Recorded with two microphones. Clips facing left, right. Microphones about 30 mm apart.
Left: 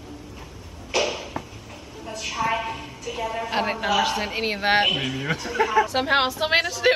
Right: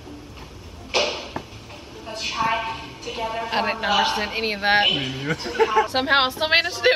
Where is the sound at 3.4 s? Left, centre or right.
Right.